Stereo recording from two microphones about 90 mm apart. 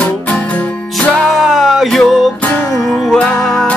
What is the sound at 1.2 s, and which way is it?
Music, 5° left (ahead or behind).